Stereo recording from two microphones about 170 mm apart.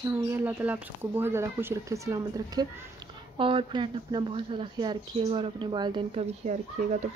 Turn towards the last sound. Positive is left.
turn(degrees=-45)  # may be behind; listen again after turning